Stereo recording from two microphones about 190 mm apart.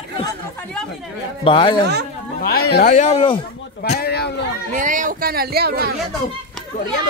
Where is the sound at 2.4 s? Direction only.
55° left (ahead or behind); by 3.3 s 30° left (ahead or behind).